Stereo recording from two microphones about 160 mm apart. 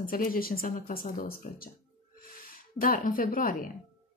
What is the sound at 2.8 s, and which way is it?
Speech, 60° left (ahead or behind).